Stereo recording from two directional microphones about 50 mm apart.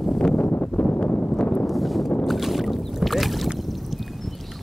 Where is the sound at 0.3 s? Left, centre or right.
Left.